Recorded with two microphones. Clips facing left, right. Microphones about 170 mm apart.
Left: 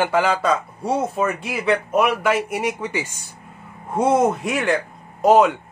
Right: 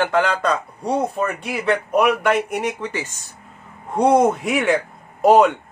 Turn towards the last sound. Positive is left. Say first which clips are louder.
# right 1 dB
turn(degrees=0)  # may be behind; listen again after turning